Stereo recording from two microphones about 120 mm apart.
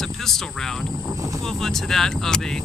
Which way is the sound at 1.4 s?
5° left (ahead or behind).